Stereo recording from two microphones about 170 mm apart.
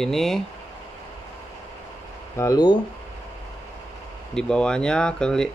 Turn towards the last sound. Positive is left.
turn(degrees=5)  # may be behind; listen again after turning